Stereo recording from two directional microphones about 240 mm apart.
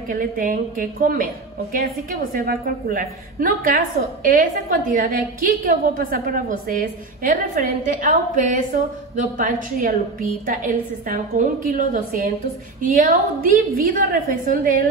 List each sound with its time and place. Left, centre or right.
0.1 s a woman's voice: right